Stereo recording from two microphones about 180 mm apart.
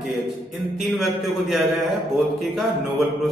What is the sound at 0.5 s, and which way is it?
A man's voice, centre (ahead or behind).